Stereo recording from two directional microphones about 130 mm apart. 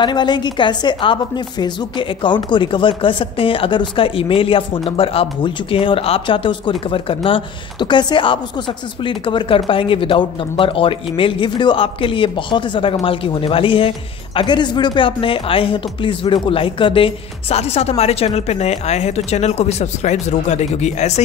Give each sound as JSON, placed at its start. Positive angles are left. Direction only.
{"t": 0.0, "sound": "a woman's voice", "side_deg": 35}